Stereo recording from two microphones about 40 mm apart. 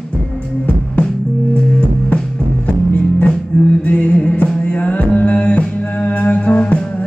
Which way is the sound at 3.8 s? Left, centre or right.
Left.